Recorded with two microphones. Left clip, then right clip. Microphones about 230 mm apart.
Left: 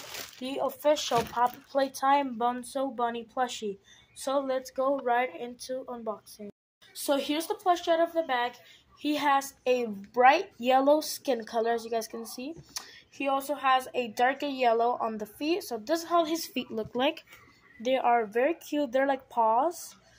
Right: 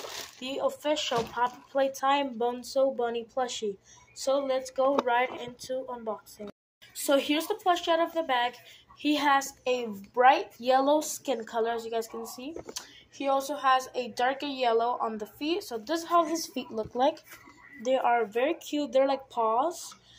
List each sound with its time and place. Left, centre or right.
0.4 s speech: left